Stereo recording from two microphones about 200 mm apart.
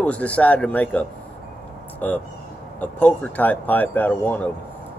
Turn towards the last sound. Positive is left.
turn(degrees=10)  # may be behind; listen again after turning